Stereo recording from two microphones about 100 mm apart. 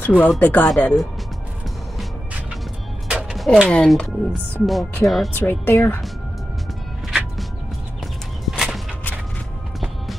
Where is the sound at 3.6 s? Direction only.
10° left (ahead or behind).